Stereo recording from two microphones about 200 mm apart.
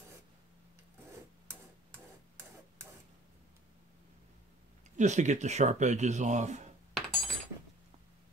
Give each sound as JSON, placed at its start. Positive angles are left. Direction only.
{"t": 4.9, "sound": "speech", "side_deg": -35}
{"t": 6.9, "sound": "coin", "side_deg": 0}